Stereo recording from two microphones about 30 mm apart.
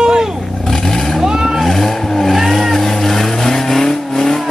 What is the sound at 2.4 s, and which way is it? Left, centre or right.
Vehicle, centre.